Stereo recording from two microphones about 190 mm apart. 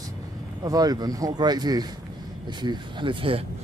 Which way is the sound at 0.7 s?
20° right (ahead or behind).